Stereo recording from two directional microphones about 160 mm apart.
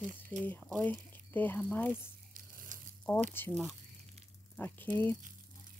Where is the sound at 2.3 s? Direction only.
60° right (ahead or behind).